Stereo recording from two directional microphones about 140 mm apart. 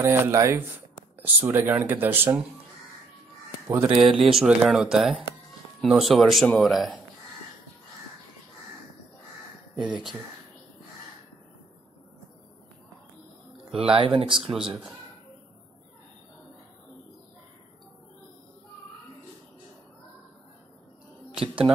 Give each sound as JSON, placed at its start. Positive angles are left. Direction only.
{"t": 0.0, "sound": "speech", "side_deg": -20}
{"t": 3.6, "sound": "speech", "side_deg": -15}
{"t": 4.2, "sound": "speech", "side_deg": -5}
{"t": 9.8, "sound": "speech", "side_deg": -5}
{"t": 13.9, "sound": "speech", "side_deg": -40}
{"t": 14.3, "sound": "speech", "side_deg": -5}